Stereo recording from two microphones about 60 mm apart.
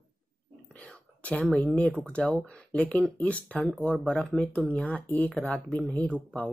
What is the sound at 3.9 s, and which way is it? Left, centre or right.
Speech, centre.